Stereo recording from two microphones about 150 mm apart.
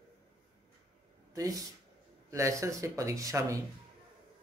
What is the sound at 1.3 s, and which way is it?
Speech, 25° right (ahead or behind).